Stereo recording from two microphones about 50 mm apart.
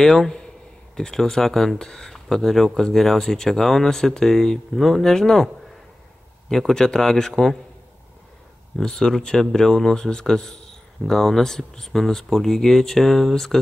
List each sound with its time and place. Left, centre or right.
0.0 s speech: centre
6.5 s speech: centre
8.7 s speech: centre